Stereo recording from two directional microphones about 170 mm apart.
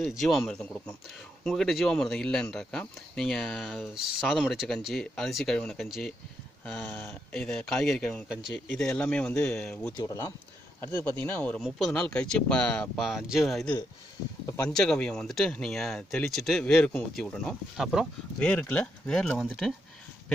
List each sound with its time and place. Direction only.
0.2 s speech: centre (ahead or behind)
7.3 s speech: 5° left (ahead or behind)
9.9 s speech: 20° left (ahead or behind); by 19.7 s centre (ahead or behind)